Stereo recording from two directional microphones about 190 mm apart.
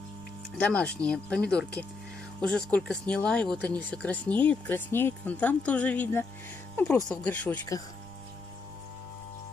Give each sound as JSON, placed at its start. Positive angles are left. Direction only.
{"t": 0.6, "sound": "speech", "side_deg": 5}